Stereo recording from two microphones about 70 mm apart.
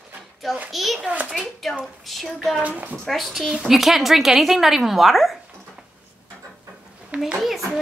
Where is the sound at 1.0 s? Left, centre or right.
Centre.